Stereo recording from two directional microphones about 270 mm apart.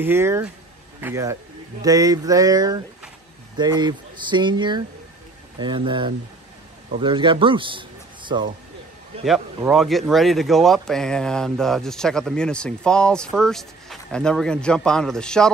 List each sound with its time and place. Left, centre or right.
0.0 s speech: centre
9.7 s speech: centre